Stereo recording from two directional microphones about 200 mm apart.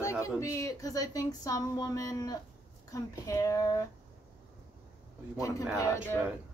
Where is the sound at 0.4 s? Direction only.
15° left (ahead or behind).